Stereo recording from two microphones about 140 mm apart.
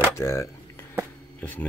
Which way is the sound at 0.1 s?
20° left (ahead or behind).